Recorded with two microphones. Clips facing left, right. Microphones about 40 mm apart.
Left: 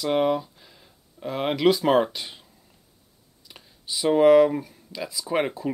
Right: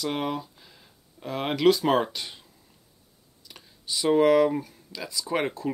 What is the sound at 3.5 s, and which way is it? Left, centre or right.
Speech, centre.